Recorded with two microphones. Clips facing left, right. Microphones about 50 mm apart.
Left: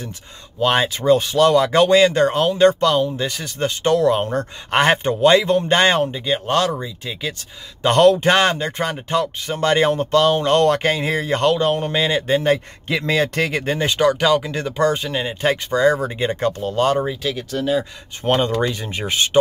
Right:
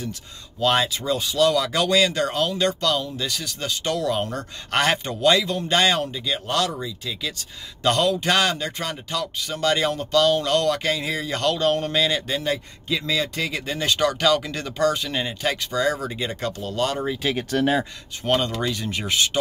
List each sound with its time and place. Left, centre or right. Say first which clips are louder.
0.6 s speech: left 3 dB; left
7.9 s speech: left 9 dB; left
8.2 s speech: left 5 dB; left
11.5 s speech: left 3 dB; centre
12.8 s speech: left 4 dB; left
13.7 s speech: left 4 dB; left
15.0 s speech: left 4 dB; centre
15.4 s speech: left 7 dB; left
17.5 s speech: right 1 dB; right
18.2 s speech: left 4 dB; left